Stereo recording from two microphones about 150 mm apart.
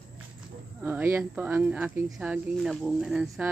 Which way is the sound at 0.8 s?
15° right (ahead or behind).